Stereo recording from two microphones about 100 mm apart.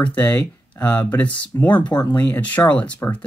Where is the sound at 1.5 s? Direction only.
30° left (ahead or behind).